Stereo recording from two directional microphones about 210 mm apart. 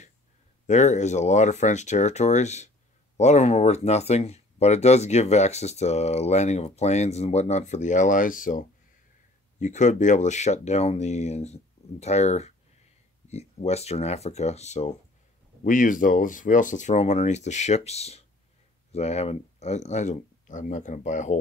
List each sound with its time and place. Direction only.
0.7 s speech: 35° left (ahead or behind)